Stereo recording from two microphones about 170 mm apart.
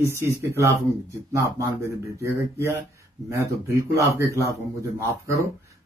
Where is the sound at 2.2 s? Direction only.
15° right (ahead or behind).